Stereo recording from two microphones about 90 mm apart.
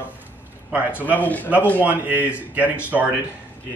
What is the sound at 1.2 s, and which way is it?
Speech, 20° left (ahead or behind).